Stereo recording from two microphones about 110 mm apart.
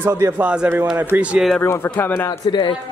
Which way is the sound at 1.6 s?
20° left (ahead or behind).